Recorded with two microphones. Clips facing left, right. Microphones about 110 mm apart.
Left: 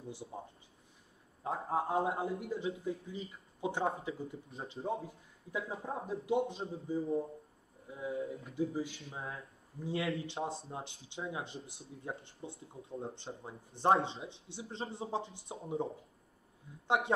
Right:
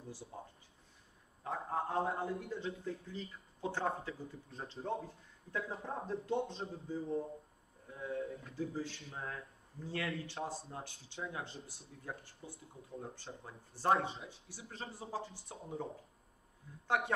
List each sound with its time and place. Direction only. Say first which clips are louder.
0.1 s speech: left 4 dB; 20° left (ahead or behind)
1.4 s speech: left 4 dB; 20° left (ahead or behind)
1.8 s speech: left 3 dB; 10° left (ahead or behind)